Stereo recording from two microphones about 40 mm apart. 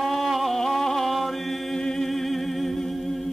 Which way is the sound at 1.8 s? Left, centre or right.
Centre.